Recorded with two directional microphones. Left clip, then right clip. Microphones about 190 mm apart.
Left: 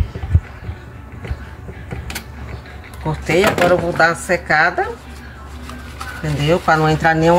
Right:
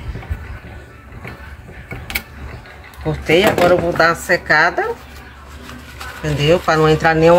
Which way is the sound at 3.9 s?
15° right (ahead or behind).